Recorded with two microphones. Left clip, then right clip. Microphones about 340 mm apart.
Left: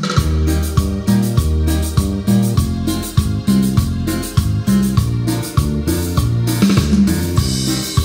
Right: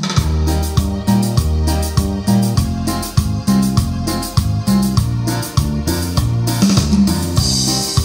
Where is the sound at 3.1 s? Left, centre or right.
Centre.